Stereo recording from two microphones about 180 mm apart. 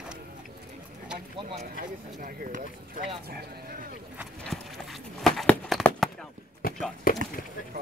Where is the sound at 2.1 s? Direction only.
50° right (ahead or behind).